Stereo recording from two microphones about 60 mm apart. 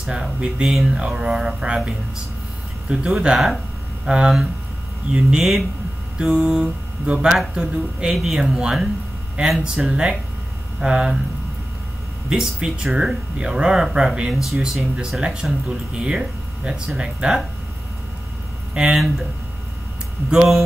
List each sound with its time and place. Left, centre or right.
0.0 s speech: centre
2.9 s speech: centre
12.3 s speech: centre
18.7 s speech: centre
20.2 s speech: centre